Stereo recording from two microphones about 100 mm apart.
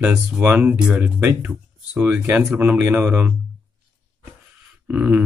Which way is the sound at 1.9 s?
20° right (ahead or behind).